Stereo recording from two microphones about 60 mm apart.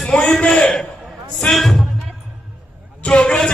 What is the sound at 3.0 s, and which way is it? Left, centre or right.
Speech, centre.